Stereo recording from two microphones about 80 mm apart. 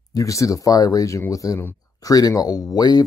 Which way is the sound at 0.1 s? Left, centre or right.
Left.